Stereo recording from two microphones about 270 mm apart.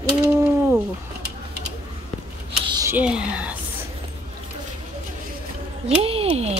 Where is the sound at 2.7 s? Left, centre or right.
Centre.